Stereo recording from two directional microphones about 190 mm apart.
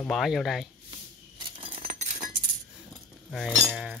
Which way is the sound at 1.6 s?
35° right (ahead or behind).